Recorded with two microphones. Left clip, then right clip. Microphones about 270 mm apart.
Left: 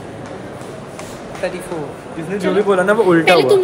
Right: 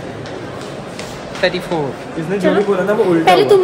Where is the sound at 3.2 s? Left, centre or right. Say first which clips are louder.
Right 3 dB; centre.